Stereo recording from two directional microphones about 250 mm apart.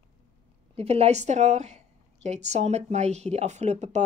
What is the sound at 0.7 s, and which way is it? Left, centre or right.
Speech, right.